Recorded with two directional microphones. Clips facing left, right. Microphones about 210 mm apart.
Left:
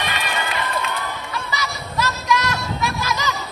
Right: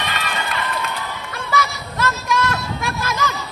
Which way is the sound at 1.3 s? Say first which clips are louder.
Right 9 dB; 50° right (ahead or behind).